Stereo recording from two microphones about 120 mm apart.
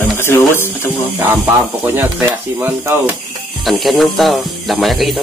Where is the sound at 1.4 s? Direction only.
15° right (ahead or behind).